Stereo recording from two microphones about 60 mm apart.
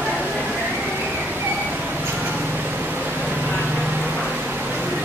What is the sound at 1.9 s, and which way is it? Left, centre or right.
Vehicle, right.